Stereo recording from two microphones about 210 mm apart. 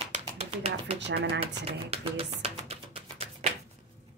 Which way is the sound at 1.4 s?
25° right (ahead or behind).